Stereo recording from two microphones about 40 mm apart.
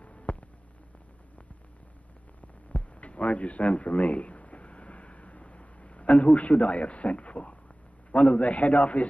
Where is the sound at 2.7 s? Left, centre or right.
Left.